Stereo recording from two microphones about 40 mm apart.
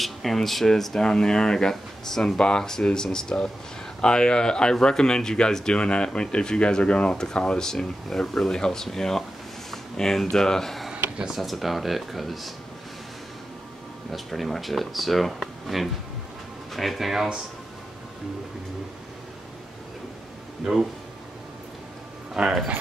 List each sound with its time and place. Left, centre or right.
0.0 s speech: centre
10.9 s a sound: right
11.3 s speech: centre
14.1 s speech: centre
22.4 s speech: right